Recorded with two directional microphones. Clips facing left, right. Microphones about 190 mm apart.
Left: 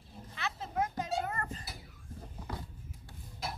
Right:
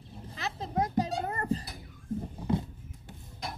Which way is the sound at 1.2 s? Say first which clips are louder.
Right 7 dB; 35° right (ahead or behind).